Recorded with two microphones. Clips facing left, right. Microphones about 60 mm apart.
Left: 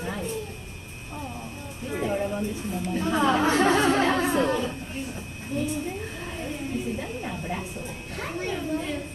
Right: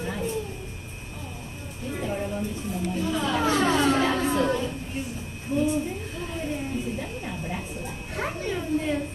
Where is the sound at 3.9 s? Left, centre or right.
Centre.